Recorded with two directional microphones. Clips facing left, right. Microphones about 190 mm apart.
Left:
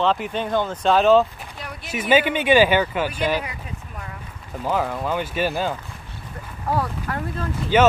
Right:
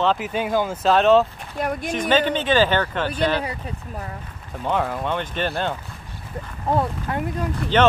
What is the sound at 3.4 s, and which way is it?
Speech, 35° right (ahead or behind).